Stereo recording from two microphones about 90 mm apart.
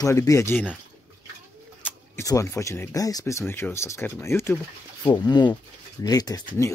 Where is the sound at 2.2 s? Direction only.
35° left (ahead or behind).